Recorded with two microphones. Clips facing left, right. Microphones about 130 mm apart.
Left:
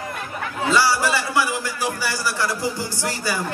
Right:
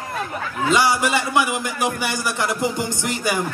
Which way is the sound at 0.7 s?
20° right (ahead or behind).